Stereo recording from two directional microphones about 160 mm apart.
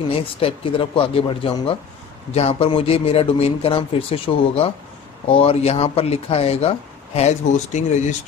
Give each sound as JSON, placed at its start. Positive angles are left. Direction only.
{"t": 0.1, "sound": "speech", "side_deg": 35}